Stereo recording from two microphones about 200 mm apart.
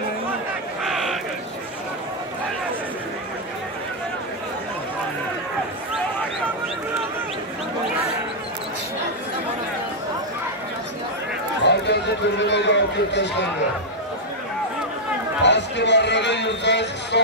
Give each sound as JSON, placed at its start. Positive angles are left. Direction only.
{"t": 0.8, "sound": "a sound", "side_deg": 0}
{"t": 11.6, "sound": "run", "side_deg": 60}
{"t": 15.4, "sound": "a man's voice", "side_deg": 60}